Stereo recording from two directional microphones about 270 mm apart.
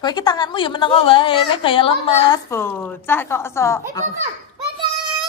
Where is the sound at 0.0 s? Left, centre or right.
Centre.